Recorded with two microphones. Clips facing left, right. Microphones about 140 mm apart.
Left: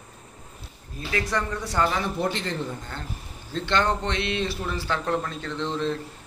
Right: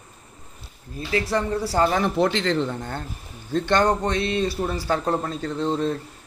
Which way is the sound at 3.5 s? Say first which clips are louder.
Right 4 dB; 45° right (ahead or behind).